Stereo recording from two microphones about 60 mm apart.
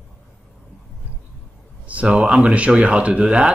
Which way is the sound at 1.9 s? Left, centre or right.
Centre.